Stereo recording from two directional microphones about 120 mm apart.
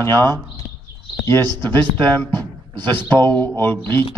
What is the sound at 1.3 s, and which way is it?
A man's voice, 20° left (ahead or behind).